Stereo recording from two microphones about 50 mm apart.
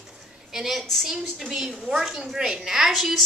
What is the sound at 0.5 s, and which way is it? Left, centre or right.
A woman's voice, centre.